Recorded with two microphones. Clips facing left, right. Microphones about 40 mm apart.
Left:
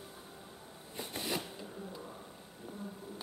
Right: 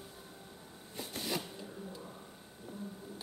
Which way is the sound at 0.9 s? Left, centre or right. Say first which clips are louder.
Even; centre.